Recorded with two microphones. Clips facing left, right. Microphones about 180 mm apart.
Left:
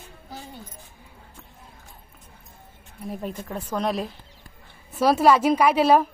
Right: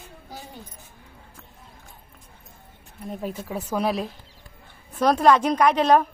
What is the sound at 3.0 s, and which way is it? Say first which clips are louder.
A woman's voice: right 1 dB; centre (ahead or behind).